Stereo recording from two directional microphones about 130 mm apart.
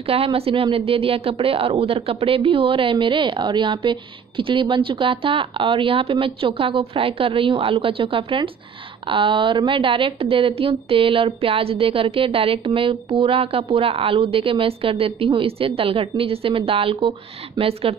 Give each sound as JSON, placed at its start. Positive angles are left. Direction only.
{"t": 0.0, "sound": "speech", "side_deg": -45}